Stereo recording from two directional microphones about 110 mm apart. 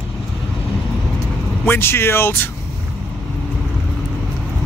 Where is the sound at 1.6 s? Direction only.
20° left (ahead or behind).